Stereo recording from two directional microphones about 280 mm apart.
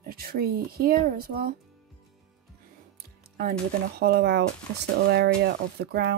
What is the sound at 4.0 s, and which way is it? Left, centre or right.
Speech, right.